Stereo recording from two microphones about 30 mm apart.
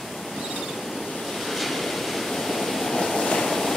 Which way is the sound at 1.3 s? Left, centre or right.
Centre.